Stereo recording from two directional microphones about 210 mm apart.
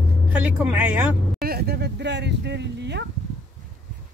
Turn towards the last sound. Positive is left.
turn(degrees=-55)  # may be behind; listen again after turning